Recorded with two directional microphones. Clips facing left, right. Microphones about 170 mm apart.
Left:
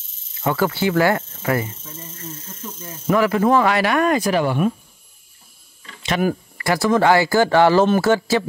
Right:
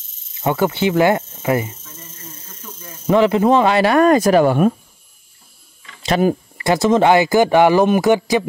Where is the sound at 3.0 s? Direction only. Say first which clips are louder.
Right 3 dB; 25° right (ahead or behind); by 4.7 s 45° right (ahead or behind).